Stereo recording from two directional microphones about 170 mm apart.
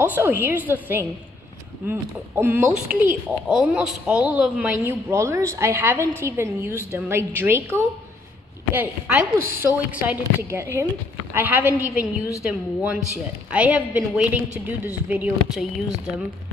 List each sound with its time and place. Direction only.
0.0 s a woman's voice: 10° right (ahead or behind)
4.8 s a woman's voice: 15° right (ahead or behind)